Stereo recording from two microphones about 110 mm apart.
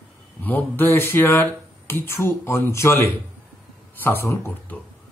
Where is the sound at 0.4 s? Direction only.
15° left (ahead or behind).